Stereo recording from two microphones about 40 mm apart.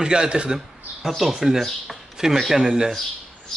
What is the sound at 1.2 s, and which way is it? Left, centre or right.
Speech, centre.